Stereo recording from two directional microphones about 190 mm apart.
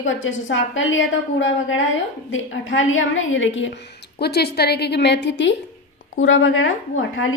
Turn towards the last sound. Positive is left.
turn(degrees=90)